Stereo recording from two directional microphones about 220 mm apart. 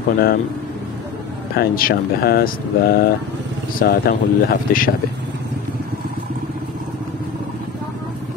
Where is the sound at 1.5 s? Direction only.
40° left (ahead or behind).